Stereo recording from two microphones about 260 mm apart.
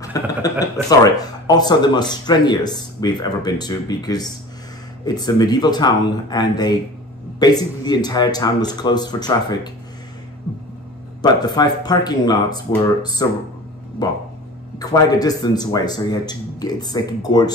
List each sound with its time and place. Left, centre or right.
0.0 s a sound: centre
0.8 s speech: centre
11.4 s speech: centre